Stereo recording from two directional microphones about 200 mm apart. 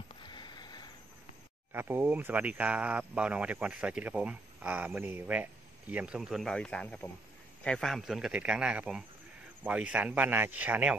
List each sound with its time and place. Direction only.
0.2 s sniff: 20° left (ahead or behind)
1.7 s speech: 10° right (ahead or behind)